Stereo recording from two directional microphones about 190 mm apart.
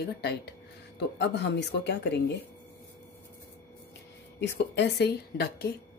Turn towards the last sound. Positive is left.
turn(degrees=60)  # may be behind; listen again after turning